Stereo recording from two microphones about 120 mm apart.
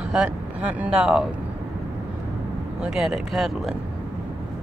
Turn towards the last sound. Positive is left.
turn(degrees=-5)  # may be behind; listen again after turning